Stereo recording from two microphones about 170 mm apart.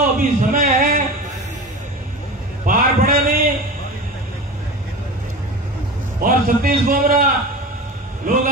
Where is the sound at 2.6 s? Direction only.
55° right (ahead or behind).